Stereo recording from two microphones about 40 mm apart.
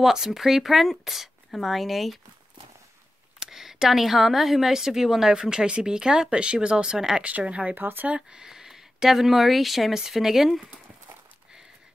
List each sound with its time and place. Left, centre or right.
0.0 s speech: centre
3.3 s speech: centre
6.3 s speech: right
7.2 s speech: right
7.7 s speech: right
8.3 s speech: centre